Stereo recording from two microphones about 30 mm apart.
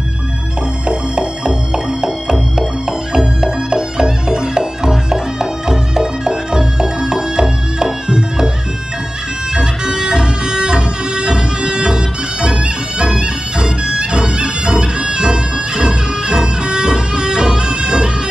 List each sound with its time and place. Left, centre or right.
0.8 s music: right
9.5 s music: right